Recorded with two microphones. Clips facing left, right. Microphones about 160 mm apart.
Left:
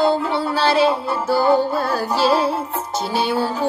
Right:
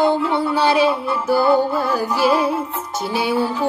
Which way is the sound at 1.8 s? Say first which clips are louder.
Right 1 dB; 15° right (ahead or behind).